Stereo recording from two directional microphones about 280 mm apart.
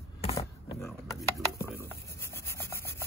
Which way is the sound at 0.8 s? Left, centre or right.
Centre.